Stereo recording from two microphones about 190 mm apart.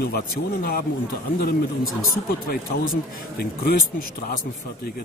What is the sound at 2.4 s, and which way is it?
Speech, 50° left (ahead or behind).